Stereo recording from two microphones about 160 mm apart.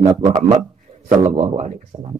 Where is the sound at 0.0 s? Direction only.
20° right (ahead or behind).